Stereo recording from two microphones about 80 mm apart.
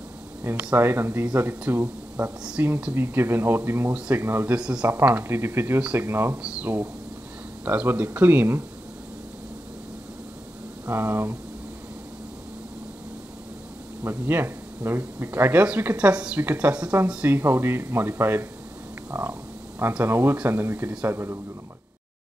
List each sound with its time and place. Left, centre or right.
0.4 s speech: centre
0.7 s speech: right
4.5 s speech: centre
4.9 s speech: right
5.8 s speech: centre
6.0 s speech: right
6.3 s speech: centre
10.9 s speech: right
14.0 s speech: right
17.4 s speech: right
19.0 s frog: right
20.1 s speech: right